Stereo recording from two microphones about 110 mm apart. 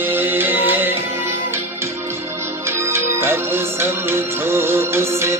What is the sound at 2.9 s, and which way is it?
Music, 20° right (ahead or behind).